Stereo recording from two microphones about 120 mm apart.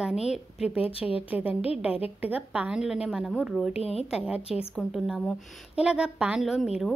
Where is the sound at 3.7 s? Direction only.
60° left (ahead or behind).